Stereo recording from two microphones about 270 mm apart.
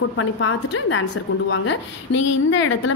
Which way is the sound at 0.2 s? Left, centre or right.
Left.